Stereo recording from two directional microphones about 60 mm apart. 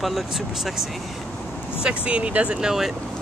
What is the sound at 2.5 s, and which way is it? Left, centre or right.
Speech, centre.